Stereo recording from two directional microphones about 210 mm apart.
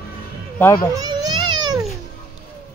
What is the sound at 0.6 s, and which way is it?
Speech, 10° left (ahead or behind).